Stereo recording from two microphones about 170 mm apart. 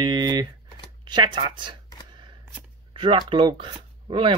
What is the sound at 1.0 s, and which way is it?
Speech, 25° right (ahead or behind).